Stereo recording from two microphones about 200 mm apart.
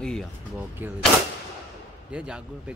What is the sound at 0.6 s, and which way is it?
Speech, 10° right (ahead or behind).